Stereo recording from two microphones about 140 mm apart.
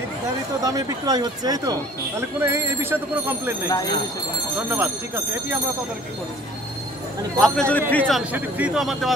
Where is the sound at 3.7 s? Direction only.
25° left (ahead or behind).